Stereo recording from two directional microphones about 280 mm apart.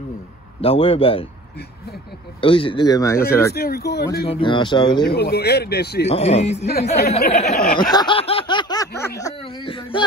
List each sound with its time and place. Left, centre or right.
0.6 s speech: centre
2.4 s snicker: centre
3.5 s speech: left
4.3 s snicker: centre
5.0 s speech: left
6.0 s speech: left
7.4 s speech: left
7.9 s snicker: centre